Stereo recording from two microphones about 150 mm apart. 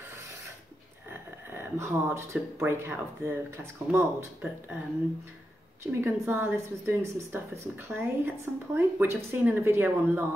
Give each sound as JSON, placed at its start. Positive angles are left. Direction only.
{"t": 1.1, "sound": "a woman's voice", "side_deg": -15}
{"t": 5.9, "sound": "a woman's voice", "side_deg": -15}